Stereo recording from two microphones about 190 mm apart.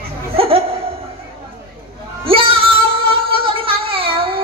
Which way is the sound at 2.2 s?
30° right (ahead or behind).